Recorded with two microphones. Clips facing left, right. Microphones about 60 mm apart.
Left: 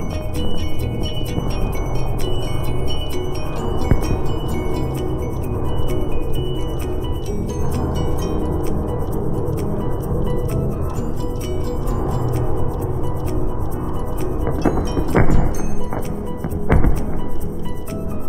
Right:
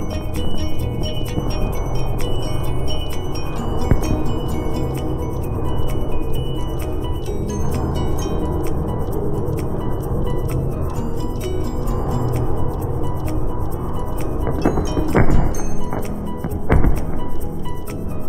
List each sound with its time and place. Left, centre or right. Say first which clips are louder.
3.9 s music: right 2 dB; centre
8.0 s music: left 1 dB; centre
12.1 s music: right 1 dB; centre
14.4 s music: right 1 dB; centre
16.6 s music: even; centre